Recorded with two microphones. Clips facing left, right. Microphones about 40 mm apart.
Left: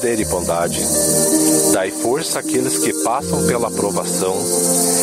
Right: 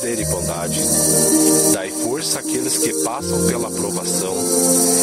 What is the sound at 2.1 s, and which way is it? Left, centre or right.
Speech, centre.